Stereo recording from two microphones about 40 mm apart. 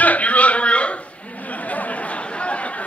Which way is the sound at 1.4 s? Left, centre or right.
Left.